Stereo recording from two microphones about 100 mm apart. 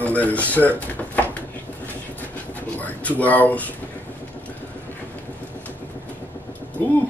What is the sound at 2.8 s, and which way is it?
Speech, 15° left (ahead or behind).